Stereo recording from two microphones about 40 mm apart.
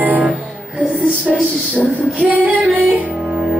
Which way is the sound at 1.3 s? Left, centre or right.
Centre.